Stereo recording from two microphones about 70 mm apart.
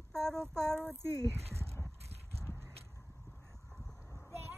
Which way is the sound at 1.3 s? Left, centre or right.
Right.